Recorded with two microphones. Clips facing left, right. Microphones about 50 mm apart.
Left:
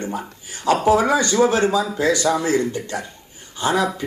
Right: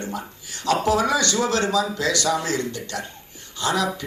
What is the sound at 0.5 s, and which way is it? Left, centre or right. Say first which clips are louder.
Speech: left 4 dB; left.